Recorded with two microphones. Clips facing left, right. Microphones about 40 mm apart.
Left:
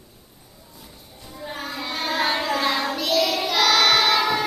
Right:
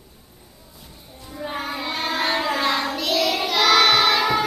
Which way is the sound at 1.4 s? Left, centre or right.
Right.